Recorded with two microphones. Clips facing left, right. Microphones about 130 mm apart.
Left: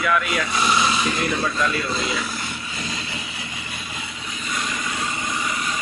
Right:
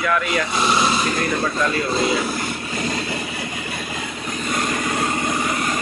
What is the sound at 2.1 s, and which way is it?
Vehicle, 45° right (ahead or behind).